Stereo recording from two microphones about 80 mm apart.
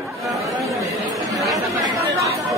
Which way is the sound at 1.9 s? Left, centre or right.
Right.